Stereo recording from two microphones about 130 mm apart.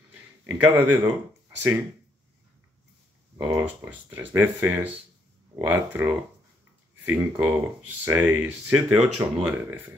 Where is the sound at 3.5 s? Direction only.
15° right (ahead or behind).